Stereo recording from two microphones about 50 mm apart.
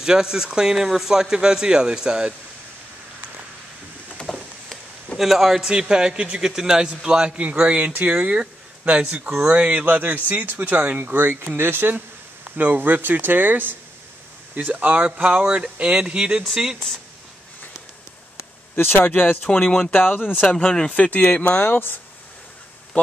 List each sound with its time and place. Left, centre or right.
0.0 s a man's voice: centre
4.2 s a sound: left
4.6 s a man's voice: centre
18.8 s speech: left
19.5 s speech: centre
19.9 s speech: left
20.4 s speech: centre
20.9 s a man's voice: left
21.6 s speech: left